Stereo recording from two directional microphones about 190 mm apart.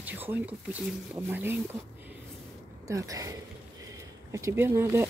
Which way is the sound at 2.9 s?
15° right (ahead or behind).